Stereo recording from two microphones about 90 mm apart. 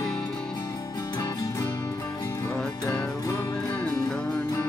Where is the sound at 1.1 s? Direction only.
40° left (ahead or behind).